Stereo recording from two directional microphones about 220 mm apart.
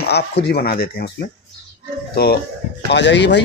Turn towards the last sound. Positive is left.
turn(degrees=50)  # may be behind; listen again after turning